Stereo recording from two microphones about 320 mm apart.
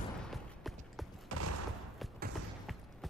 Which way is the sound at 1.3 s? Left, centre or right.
Right.